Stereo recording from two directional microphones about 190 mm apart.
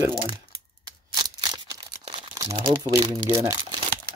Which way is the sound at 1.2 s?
20° right (ahead or behind).